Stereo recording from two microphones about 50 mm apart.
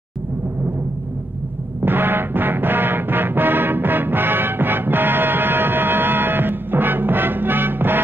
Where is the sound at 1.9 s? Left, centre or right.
Right.